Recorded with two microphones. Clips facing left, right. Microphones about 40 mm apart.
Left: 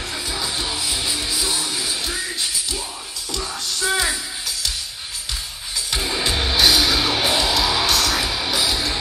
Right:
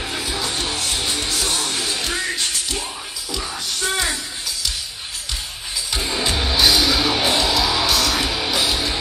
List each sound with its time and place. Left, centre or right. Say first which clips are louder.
0.0 s music: right 2 dB; centre
0.6 s music: right 1 dB; right
1.3 s music: right 1 dB; right
3.9 s music: left 2 dB; centre
5.9 s music: even; centre